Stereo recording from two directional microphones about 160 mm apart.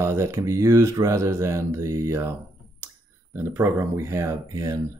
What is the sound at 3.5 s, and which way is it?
Speech, 15° right (ahead or behind).